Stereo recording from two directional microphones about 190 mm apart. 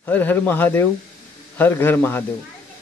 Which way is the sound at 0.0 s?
10° left (ahead or behind).